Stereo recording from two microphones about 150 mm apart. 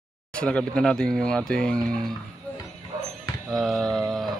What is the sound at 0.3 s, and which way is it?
Speech, 5° left (ahead or behind).